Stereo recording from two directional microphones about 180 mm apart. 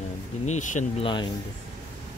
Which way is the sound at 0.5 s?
45° left (ahead or behind).